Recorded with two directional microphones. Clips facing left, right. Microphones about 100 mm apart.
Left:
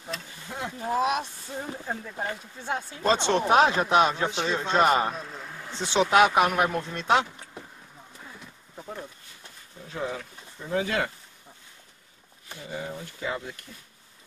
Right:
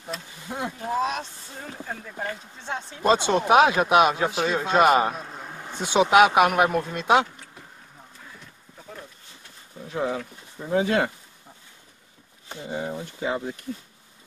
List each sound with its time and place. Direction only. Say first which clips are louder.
0.5 s speech: right 4 dB; 20° right (ahead or behind)
0.8 s speech: left 2 dB; 5° left (ahead or behind)
3.0 s speech: right 3 dB; 10° right (ahead or behind)
9.8 s speech: right 5 dB; 20° right (ahead or behind)
12.4 s speech: right 5 dB; 25° right (ahead or behind)